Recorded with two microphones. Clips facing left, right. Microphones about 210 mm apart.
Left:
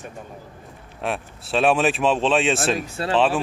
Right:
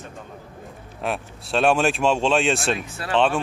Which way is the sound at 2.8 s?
30° left (ahead or behind).